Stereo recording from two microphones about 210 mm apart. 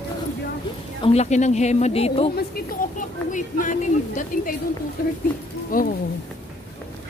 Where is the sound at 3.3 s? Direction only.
40° left (ahead or behind).